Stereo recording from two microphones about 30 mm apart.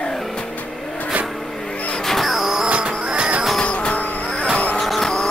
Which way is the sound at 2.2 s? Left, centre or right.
Centre.